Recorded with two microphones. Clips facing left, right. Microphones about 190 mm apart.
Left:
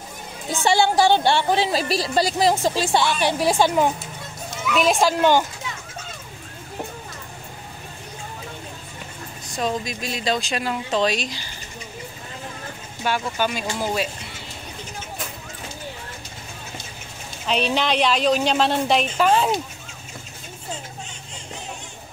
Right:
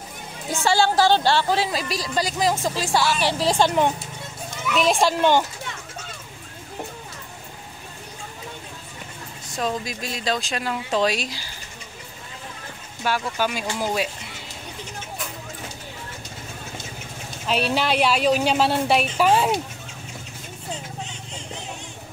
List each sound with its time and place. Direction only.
0.7 s a woman's voice: 15° left (ahead or behind)
1.7 s speech: 30° left (ahead or behind)
3.2 s a woman's voice: 15° left (ahead or behind)
9.6 s a woman's voice: centre (ahead or behind)
13.0 s a woman's voice: 5° right (ahead or behind)
17.5 s a woman's voice: 5° right (ahead or behind)